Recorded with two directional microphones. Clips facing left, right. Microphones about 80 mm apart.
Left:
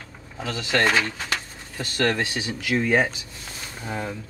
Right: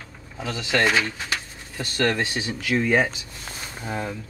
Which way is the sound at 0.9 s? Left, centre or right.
Left.